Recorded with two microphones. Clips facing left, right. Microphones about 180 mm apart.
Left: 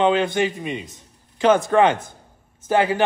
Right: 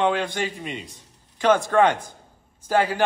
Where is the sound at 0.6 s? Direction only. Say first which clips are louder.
Left 5 dB; 5° left (ahead or behind).